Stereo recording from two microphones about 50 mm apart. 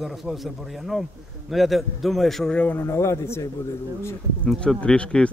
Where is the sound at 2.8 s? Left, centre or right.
Left.